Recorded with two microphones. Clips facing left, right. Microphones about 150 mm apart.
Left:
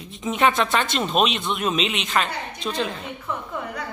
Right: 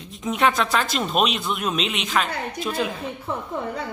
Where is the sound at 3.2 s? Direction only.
30° right (ahead or behind).